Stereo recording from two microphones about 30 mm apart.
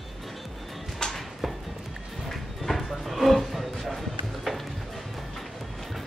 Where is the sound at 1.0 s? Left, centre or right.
Left.